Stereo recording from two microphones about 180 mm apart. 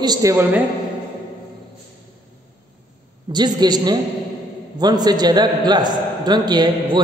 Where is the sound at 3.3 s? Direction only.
25° right (ahead or behind).